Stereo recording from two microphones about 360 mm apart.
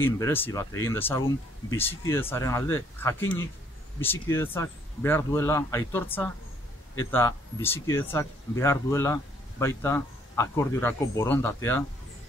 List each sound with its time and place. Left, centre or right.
0.0 s speech: centre